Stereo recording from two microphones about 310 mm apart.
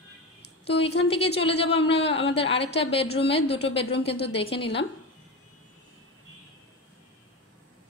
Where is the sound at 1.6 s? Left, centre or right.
Centre.